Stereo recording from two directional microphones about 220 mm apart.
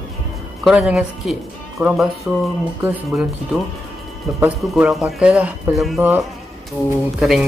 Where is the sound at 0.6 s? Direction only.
5° right (ahead or behind).